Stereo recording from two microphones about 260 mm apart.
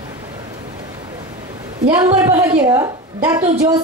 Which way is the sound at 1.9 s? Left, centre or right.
Centre.